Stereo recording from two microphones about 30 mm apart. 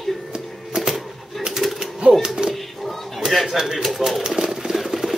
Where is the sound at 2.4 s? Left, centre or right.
Right.